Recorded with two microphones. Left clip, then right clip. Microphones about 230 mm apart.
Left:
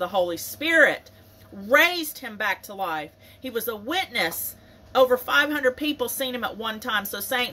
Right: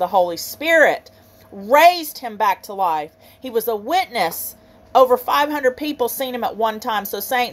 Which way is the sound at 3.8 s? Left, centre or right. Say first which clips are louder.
Right 6 dB; centre.